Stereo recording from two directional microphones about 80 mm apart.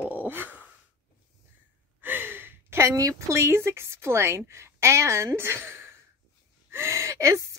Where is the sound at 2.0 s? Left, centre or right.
Right.